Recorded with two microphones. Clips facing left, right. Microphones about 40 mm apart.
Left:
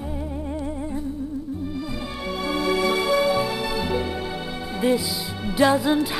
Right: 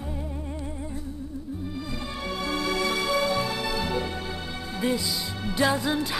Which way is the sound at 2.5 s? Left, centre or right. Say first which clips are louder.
Left 5 dB; centre.